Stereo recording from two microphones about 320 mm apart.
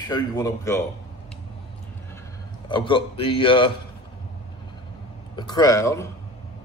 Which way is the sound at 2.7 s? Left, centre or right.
Centre.